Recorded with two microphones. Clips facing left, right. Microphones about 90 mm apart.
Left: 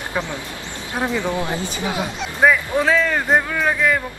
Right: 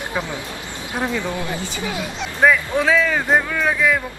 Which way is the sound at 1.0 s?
15° left (ahead or behind).